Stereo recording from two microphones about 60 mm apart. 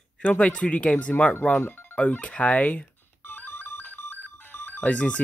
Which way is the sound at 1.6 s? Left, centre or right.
Left.